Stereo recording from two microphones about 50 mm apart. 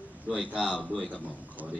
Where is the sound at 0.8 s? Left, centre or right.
Centre.